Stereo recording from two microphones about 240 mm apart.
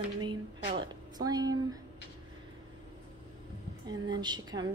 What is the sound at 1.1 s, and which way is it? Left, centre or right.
Speech, centre.